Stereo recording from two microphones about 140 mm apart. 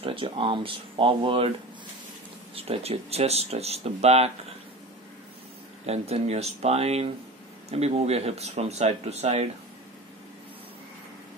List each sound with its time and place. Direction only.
0.0 s speech: 40° right (ahead or behind)
2.5 s speech: 45° right (ahead or behind)
5.9 s speech: 50° right (ahead or behind)